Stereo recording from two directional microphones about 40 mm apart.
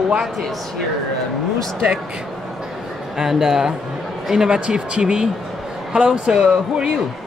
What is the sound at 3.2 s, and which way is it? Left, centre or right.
Speech, centre.